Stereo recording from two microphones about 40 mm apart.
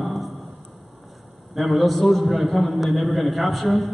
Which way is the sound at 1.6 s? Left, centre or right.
Centre.